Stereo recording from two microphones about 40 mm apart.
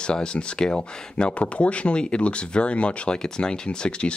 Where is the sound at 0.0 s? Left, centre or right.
Left.